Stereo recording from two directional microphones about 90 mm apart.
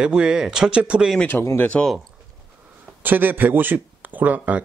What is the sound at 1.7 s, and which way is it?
Speech, 10° left (ahead or behind).